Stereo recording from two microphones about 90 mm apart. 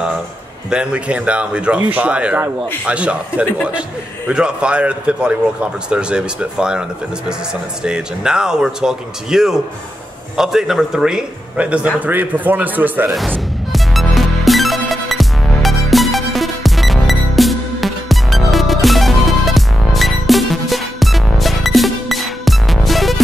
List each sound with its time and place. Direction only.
0.7 s speech: 10° right (ahead or behind)
7.8 s a man's voice: 10° right (ahead or behind)
13.7 s music: centre (ahead or behind)